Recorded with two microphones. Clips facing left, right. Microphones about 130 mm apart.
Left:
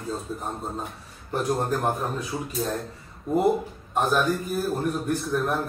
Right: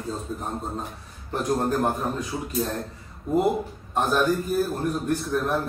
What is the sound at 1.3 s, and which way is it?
A man's voice, centre (ahead or behind).